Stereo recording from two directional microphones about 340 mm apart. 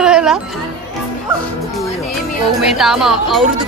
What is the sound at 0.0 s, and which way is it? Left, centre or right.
Chatter, centre.